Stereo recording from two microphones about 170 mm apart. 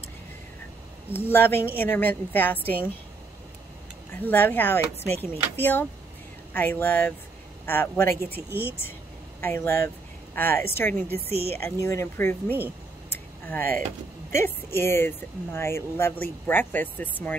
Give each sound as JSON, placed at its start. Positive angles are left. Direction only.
{"t": 1.1, "sound": "speech", "side_deg": 15}
{"t": 4.1, "sound": "speech", "side_deg": 10}
{"t": 11.0, "sound": "speech", "side_deg": -65}
{"t": 11.6, "sound": "speech", "side_deg": 15}
{"t": 13.1, "sound": "a sound", "side_deg": 10}
{"t": 14.3, "sound": "speech", "side_deg": 15}